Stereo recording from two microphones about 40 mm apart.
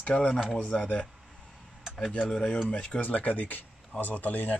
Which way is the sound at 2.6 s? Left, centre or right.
Left.